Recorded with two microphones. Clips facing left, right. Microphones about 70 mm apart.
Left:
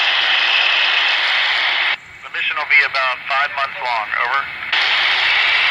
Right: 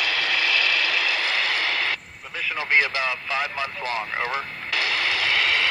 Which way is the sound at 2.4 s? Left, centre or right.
Left.